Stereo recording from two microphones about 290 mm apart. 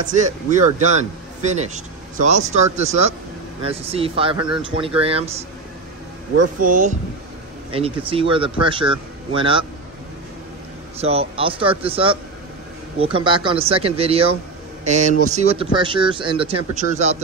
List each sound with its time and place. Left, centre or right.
0.1 s a man's voice: right
6.6 s a man's voice: right
11.0 s a man's voice: right